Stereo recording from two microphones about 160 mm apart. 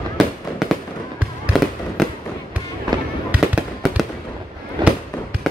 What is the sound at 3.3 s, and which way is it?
Fireworks, 5° right (ahead or behind).